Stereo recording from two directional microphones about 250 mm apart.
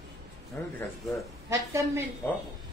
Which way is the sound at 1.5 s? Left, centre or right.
Centre.